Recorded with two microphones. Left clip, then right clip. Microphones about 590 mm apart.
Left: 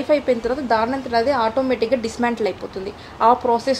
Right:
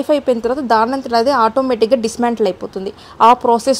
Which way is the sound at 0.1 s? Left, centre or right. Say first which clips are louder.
Right 3 dB; right.